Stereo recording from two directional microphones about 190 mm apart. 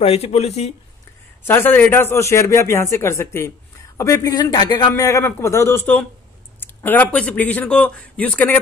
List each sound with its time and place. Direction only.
0.0 s speech: 35° left (ahead or behind)
1.5 s a man's voice: 10° left (ahead or behind)